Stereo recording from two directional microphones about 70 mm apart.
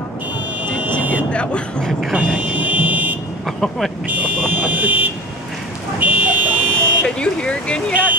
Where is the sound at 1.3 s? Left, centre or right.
Centre.